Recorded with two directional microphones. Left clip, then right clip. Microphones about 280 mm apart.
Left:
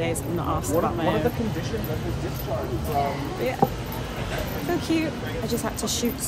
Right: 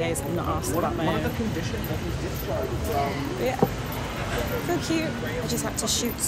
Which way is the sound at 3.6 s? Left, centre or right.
Centre.